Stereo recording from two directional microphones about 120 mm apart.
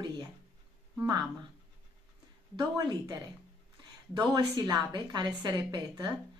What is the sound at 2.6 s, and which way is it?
A woman's voice, 35° right (ahead or behind).